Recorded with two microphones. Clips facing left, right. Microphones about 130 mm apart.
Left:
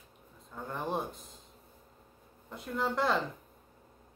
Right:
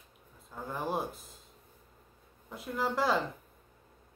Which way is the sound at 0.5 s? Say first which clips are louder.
Even; centre (ahead or behind).